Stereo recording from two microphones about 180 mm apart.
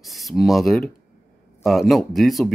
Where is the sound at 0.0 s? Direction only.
Centre (ahead or behind).